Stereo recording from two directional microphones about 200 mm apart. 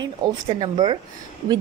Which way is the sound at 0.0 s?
25° right (ahead or behind).